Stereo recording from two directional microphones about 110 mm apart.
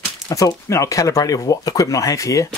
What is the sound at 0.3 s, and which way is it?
Speech, 30° left (ahead or behind).